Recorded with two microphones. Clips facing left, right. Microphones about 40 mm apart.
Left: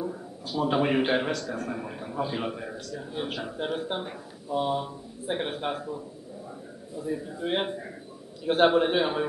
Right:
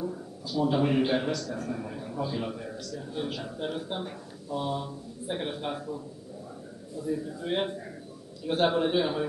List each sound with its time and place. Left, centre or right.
0.0 s a man's voice: left
2.1 s speech: left
7.0 s speech: left